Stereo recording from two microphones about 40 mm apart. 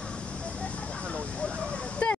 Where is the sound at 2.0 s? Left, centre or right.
Left.